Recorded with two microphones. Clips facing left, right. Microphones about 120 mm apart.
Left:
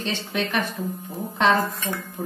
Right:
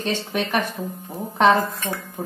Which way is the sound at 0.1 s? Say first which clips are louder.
Right 4 dB; 50° right (ahead or behind).